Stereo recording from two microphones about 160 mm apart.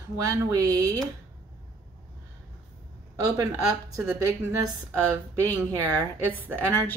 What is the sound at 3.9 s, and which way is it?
Speech, 20° right (ahead or behind).